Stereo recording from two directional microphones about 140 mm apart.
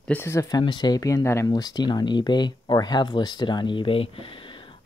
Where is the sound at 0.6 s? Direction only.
35° left (ahead or behind).